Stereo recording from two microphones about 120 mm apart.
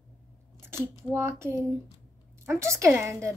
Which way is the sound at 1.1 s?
20° right (ahead or behind).